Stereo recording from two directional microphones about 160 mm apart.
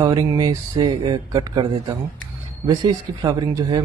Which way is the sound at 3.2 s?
25° right (ahead or behind).